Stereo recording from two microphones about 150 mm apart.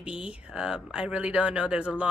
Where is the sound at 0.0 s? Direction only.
5° right (ahead or behind).